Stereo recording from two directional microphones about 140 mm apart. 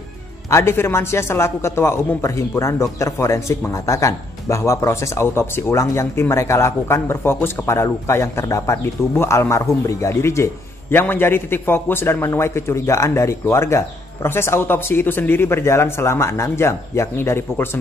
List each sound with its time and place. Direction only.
0.5 s a man's voice: 20° left (ahead or behind)